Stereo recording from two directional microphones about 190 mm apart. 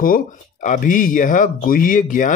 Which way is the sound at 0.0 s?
45° left (ahead or behind).